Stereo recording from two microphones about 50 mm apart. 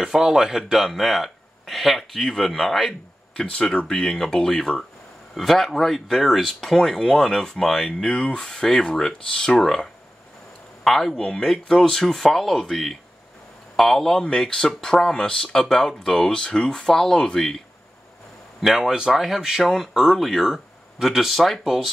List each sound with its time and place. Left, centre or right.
0.0 s speech: centre
3.3 s speech: centre
8.0 s speech: centre
10.8 s speech: centre
11.1 s speech: centre
14.2 s speech: centre
18.6 s speech: centre